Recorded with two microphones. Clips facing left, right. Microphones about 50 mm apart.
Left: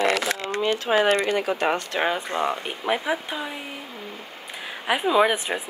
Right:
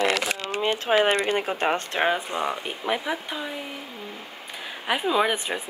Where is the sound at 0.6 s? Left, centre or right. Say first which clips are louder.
Even; right.